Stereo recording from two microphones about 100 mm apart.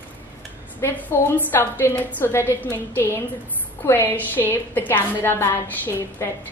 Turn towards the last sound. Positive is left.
turn(degrees=25)  # may be behind; listen again after turning